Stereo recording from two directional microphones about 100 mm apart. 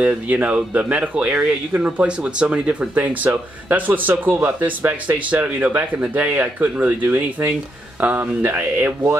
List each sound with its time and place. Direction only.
0.0 s speech: 15° right (ahead or behind)